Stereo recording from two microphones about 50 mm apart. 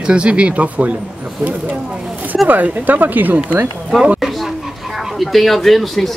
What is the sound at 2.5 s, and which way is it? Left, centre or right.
Speech, right.